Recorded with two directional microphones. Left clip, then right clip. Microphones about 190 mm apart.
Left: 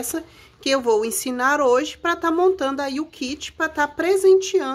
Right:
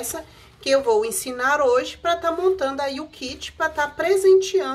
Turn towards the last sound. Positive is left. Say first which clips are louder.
# even
turn(degrees=45)  # may be behind; listen again after turning